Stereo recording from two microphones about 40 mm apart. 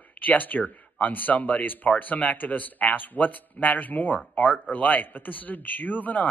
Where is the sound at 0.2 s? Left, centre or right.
Left.